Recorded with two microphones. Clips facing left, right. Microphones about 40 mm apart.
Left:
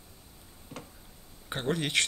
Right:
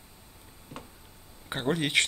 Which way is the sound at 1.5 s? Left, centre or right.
Centre.